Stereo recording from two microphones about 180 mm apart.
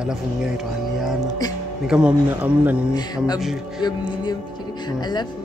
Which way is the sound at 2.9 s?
20° left (ahead or behind).